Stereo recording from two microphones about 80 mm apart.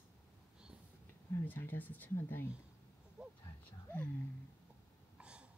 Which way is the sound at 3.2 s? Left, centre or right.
Right.